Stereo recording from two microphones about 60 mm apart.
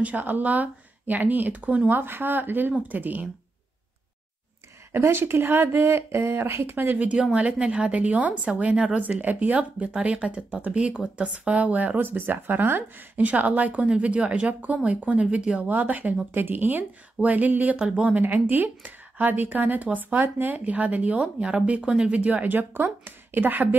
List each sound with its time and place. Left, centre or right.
0.0 s speech: right
1.9 s speech: right
4.9 s speech: right
7.3 s speech: centre
17.7 s speech: centre
18.2 s speech: right